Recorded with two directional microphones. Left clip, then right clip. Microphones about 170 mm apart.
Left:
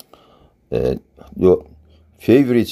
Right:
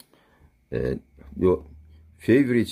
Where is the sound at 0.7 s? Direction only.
30° right (ahead or behind).